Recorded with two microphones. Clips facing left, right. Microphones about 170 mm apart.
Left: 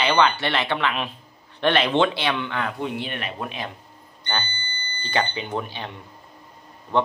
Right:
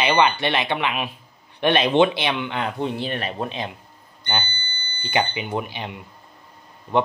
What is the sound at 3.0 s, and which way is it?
Speech, 35° right (ahead or behind).